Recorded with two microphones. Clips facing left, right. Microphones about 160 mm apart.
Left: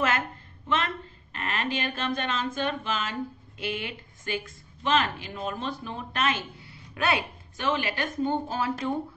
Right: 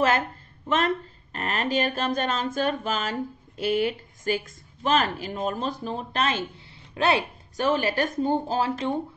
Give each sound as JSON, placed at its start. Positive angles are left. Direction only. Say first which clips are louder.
{"t": 0.7, "sound": "speech", "louder": "right 5 dB", "side_deg": -40}